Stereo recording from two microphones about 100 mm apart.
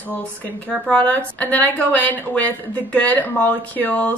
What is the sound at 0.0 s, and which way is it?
A woman's voice, 20° left (ahead or behind).